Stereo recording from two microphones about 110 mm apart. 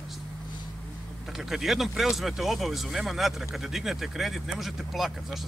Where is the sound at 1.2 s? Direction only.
5° right (ahead or behind).